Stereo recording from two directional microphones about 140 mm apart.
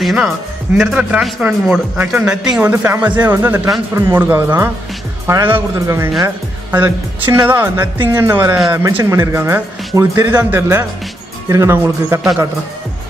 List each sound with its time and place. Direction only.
0.0 s a man's voice: 5° right (ahead or behind)
2.7 s a woman's voice: 15° right (ahead or behind)